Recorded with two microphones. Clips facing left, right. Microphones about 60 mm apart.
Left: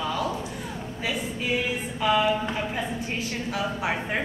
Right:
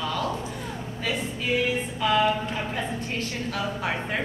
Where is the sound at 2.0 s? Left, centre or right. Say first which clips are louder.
Even; centre.